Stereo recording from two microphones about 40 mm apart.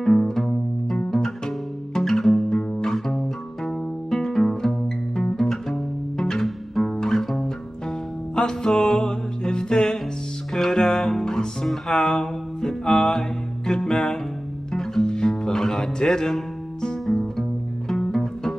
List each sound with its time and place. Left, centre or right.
0.0 s music: centre
8.4 s music: centre
11.9 s mantra: centre
13.7 s music: centre
17.0 s music: centre